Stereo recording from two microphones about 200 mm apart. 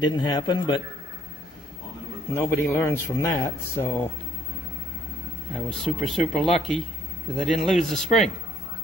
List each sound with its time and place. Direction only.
0.0 s a man's voice: 20° left (ahead or behind)
2.3 s speech: 10° left (ahead or behind)
5.5 s speech: centre (ahead or behind)